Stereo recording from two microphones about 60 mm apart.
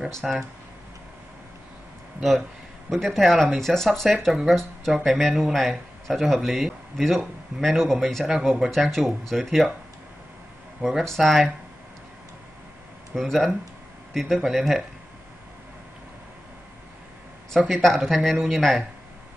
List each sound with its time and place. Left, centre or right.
0.1 s speech: centre
2.9 s speech: centre
8.3 s speech: centre
10.8 s speech: centre
13.1 s speech: centre
17.6 s speech: centre